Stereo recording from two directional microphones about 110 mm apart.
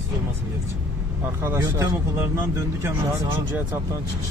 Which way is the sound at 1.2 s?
20° right (ahead or behind).